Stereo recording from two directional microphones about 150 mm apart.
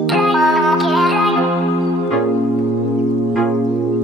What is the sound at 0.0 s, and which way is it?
Music, centre (ahead or behind).